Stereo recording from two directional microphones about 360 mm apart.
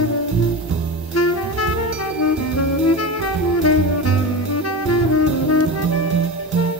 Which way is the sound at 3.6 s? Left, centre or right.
Left.